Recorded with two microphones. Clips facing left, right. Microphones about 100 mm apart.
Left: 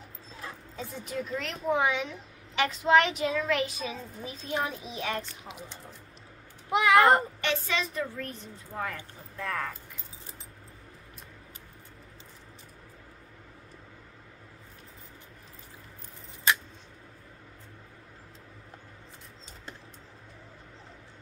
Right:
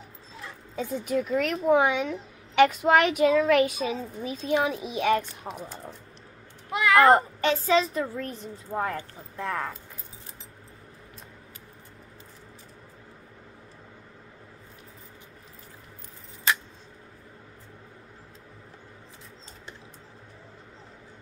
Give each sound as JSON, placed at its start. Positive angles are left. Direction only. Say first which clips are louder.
{"t": 0.7, "sound": "a child's voice", "louder": "right 9 dB", "side_deg": -65}
{"t": 4.5, "sound": "speech", "louder": "right 7 dB", "side_deg": -80}
{"t": 6.7, "sound": "speech", "louder": "right 1 dB", "side_deg": 20}
{"t": 7.1, "sound": "a woman's voice", "louder": "right 4 dB", "side_deg": -30}
{"t": 9.5, "sound": "speech", "louder": "right 2 dB", "side_deg": -20}